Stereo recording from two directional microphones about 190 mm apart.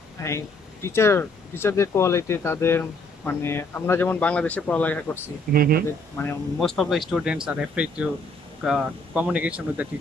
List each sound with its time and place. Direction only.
0.2 s speech: 15° left (ahead or behind)
5.5 s speech: 50° right (ahead or behind)
6.6 s speech: centre (ahead or behind)